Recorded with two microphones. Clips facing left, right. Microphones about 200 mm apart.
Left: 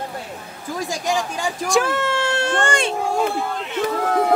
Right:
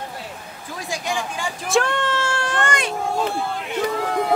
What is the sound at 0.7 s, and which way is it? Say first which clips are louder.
Speech: left 4 dB; 45° left (ahead or behind).